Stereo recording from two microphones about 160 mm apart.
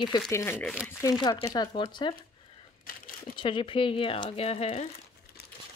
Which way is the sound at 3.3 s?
30° left (ahead or behind).